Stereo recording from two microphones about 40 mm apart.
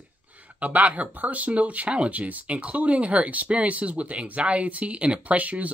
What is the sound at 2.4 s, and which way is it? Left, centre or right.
Speech, right.